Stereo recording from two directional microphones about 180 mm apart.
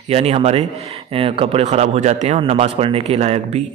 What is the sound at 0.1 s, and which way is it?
Speech, 35° right (ahead or behind).